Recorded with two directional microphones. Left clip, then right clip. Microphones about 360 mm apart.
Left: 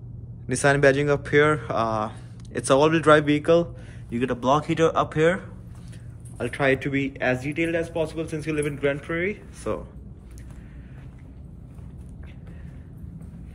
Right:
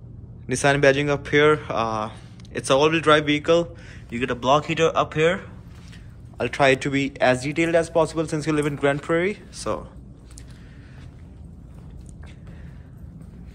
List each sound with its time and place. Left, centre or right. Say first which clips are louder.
0.5 s speech: right 1 dB; centre